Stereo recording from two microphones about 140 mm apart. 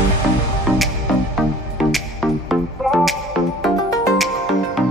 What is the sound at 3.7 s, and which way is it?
Music, 25° left (ahead or behind).